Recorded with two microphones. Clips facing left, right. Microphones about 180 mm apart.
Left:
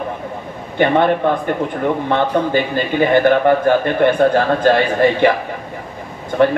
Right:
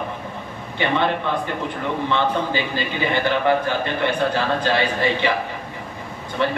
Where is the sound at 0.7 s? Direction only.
50° left (ahead or behind).